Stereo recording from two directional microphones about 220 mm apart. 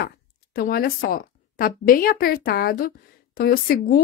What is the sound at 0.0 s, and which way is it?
Speech, 45° left (ahead or behind).